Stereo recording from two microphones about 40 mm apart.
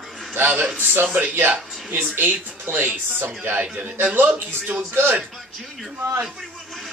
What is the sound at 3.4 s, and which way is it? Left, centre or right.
Speech, right.